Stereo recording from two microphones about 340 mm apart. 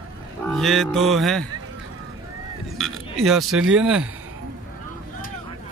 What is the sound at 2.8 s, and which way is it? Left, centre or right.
A man's voice, centre.